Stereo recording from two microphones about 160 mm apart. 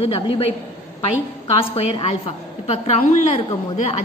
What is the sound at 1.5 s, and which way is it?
A woman's voice, 35° left (ahead or behind).